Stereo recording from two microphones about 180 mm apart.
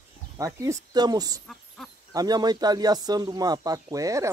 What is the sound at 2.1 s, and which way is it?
Speech, 20° right (ahead or behind).